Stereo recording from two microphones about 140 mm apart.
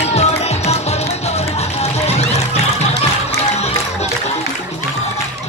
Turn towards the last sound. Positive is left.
turn(degrees=50)  # may be behind; listen again after turning